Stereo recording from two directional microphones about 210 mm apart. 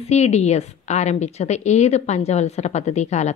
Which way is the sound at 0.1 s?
30° left (ahead or behind).